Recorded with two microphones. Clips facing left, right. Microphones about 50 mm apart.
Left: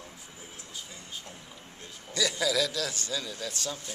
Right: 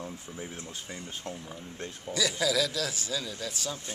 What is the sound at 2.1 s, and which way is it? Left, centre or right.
A man's voice, centre.